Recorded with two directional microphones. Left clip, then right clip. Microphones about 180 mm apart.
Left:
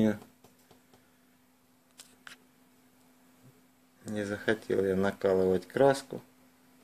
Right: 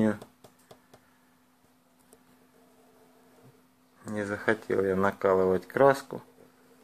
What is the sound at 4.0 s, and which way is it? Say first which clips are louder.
Speech: right 3 dB; 20° left (ahead or behind).